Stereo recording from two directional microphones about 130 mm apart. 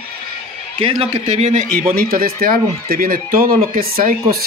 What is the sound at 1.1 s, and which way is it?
Speech, 55° right (ahead or behind).